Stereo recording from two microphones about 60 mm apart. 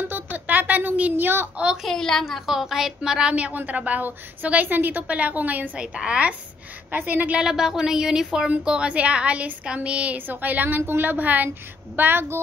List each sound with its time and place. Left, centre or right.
0.1 s a sound: right
1.8 s a woman's voice: centre
2.2 s a woman's voice: centre; by 5.7 s right
5.8 s a woman's voice: centre
6.9 s a woman's voice: right
7.3 s a woman's voice: centre; by 11.5 s right
12.0 s speech: right